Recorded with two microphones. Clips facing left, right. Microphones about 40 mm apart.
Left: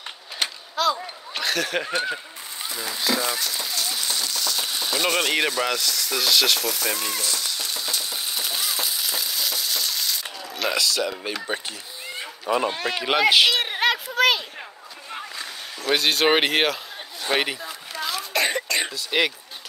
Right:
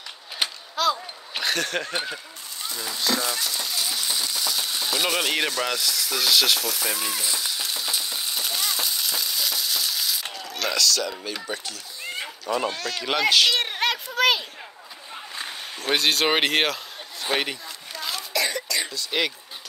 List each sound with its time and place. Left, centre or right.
0.4 s mechanisms: centre
1.3 s speech: centre
2.6 s a sound: centre
4.6 s speech: centre
7.2 s frying: centre
10.5 s speech: centre
12.4 s speech: left
13.6 s a sound: centre
15.3 s a sound: right
15.9 s speech: centre
16.3 s a sound: centre
18.3 s cough: left
18.9 s speech: centre